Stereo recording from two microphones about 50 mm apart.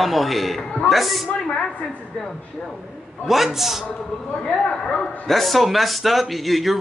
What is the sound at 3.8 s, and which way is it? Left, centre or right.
A man's voice, centre.